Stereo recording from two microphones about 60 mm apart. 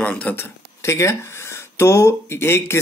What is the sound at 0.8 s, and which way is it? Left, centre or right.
Speech, left.